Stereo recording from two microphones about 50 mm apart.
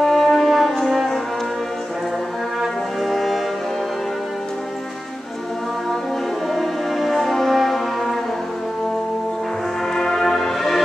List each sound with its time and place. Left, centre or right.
0.0 s music: centre
2.6 s brass instrument: centre
6.5 s brass instrument: centre
9.9 s music: centre